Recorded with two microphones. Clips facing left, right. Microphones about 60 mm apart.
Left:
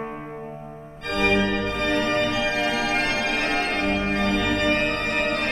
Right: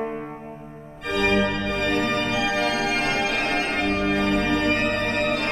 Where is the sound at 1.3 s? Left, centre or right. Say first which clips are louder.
Even; right.